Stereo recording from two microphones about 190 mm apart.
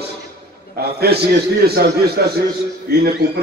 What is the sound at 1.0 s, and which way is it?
A man's voice, 55° right (ahead or behind).